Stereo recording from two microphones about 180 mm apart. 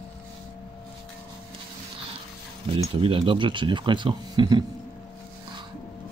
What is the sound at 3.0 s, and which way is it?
Speech, 30° right (ahead or behind).